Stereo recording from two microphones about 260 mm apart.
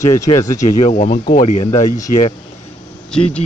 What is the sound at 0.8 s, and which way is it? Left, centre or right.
Speech, left.